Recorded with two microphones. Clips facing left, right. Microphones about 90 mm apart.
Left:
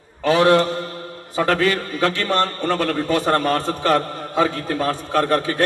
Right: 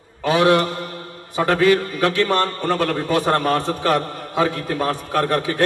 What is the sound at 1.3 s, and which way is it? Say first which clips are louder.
A man's voice: right 3 dB; 20° right (ahead or behind).